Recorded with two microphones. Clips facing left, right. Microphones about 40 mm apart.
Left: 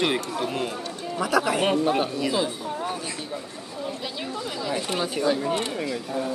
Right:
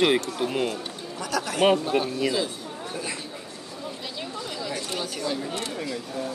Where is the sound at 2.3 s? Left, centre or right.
Centre.